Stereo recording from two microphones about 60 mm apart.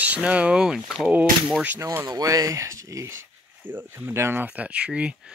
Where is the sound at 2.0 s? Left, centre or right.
Right.